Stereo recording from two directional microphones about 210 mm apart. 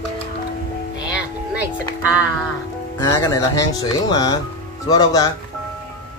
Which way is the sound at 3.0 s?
15° left (ahead or behind).